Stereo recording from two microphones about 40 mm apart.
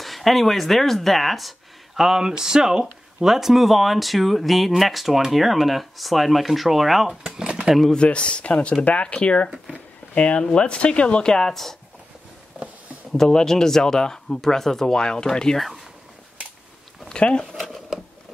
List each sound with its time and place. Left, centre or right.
0.0 s speech: centre
2.0 s speech: centre
7.1 s drawer open or close: centre
7.9 s speech: left
9.7 s a sound: left
10.4 s speech: left
11.3 s speech: centre
13.1 s speech: centre
17.1 s speech: left